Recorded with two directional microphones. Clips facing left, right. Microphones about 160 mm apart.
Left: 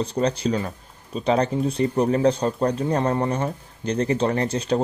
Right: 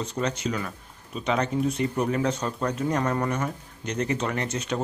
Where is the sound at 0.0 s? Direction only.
35° left (ahead or behind).